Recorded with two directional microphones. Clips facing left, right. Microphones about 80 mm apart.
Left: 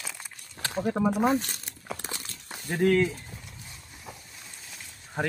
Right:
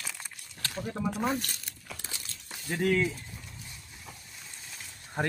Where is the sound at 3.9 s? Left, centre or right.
Centre.